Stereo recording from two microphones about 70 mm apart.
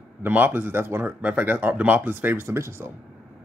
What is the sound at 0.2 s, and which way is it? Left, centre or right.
A man's voice, right.